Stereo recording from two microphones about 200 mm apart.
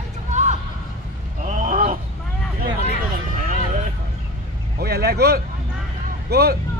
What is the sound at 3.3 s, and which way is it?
Vehicle, 40° right (ahead or behind).